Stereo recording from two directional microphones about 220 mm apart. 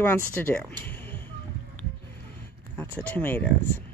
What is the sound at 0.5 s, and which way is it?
Music, 5° left (ahead or behind).